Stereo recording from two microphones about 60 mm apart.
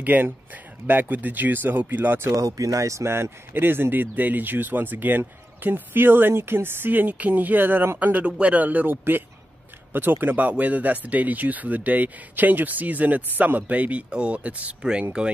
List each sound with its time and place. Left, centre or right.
0.0 s a man's voice: right
2.4 s a man's voice: right
8.0 s speech: right